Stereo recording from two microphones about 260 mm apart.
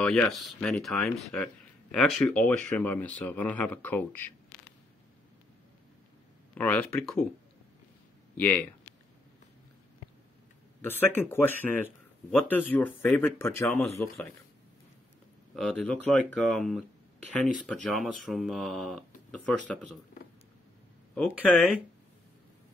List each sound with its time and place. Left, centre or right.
0.0 s speech: centre
6.5 s speech: centre
8.4 s speech: centre
10.8 s speech: centre
15.5 s speech: centre
21.1 s speech: centre